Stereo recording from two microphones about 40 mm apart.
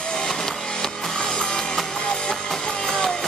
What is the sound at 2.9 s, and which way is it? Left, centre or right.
Music, centre.